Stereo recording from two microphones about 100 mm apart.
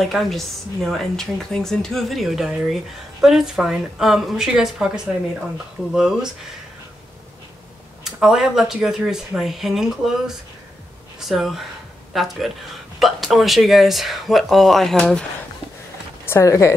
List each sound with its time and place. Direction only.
0.1 s a woman's voice: centre (ahead or behind)
8.0 s a woman's voice: 5° right (ahead or behind)
16.3 s speech: 30° left (ahead or behind)